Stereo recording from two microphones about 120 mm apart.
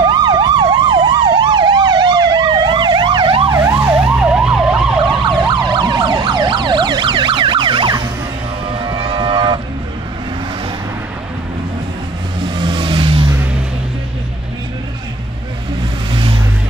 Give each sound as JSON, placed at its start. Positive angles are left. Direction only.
{"t": 0.0, "sound": "emergency vehicle", "side_deg": -35}
{"t": 3.6, "sound": "emergency vehicle", "side_deg": -10}
{"t": 5.5, "sound": "emergency vehicle", "side_deg": -40}
{"t": 8.6, "sound": "vehicle", "side_deg": -40}
{"t": 12.4, "sound": "vehicle", "side_deg": -40}
{"t": 16.1, "sound": "vehicle", "side_deg": -45}